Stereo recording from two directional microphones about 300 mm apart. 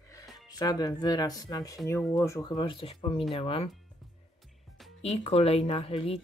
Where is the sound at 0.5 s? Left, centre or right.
Centre.